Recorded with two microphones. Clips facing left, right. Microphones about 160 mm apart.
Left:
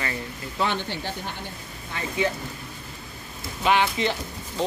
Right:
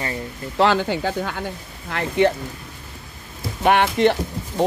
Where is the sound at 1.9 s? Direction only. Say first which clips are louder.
Right 8 dB; 70° right (ahead or behind).